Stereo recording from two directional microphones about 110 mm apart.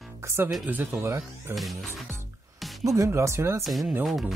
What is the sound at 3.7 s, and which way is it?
Speech, centre (ahead or behind).